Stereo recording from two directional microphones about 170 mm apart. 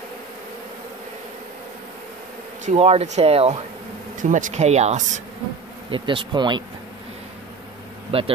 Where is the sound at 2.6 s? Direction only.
40° right (ahead or behind).